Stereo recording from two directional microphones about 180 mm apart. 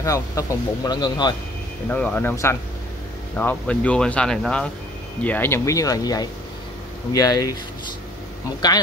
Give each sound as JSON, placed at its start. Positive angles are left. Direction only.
{"t": 0.0, "sound": "speech", "side_deg": 20}
{"t": 1.9, "sound": "speech", "side_deg": 10}
{"t": 8.5, "sound": "speech", "side_deg": 20}